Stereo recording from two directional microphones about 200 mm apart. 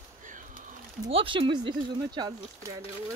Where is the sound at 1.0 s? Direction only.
25° right (ahead or behind).